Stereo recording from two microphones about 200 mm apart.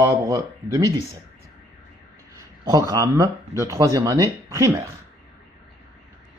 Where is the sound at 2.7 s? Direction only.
15° right (ahead or behind).